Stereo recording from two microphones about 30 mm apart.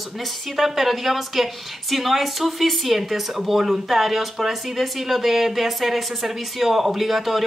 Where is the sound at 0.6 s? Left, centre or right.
Centre.